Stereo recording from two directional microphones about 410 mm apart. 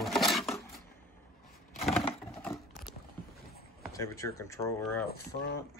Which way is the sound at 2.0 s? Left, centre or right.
Centre.